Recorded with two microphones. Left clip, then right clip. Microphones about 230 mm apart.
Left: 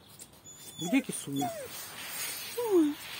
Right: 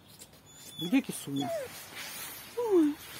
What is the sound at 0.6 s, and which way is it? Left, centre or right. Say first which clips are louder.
Speech: even; centre.